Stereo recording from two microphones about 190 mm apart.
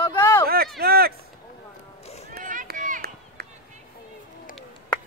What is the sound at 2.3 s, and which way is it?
Run, 45° right (ahead or behind).